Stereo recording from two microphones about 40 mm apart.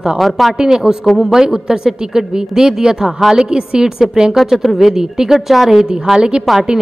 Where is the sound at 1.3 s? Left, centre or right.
Centre.